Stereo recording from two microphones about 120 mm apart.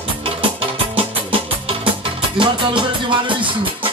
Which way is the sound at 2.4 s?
40° right (ahead or behind).